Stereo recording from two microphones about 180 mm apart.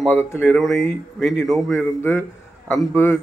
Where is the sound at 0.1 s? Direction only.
10° left (ahead or behind).